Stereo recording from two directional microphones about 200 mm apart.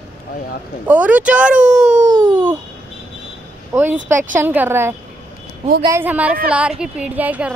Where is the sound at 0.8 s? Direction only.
5° right (ahead or behind).